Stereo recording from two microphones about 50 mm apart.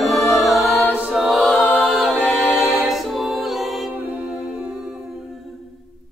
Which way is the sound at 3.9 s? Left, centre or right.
Right.